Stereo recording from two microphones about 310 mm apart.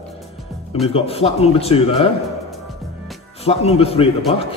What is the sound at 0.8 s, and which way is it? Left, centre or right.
A man's voice, centre.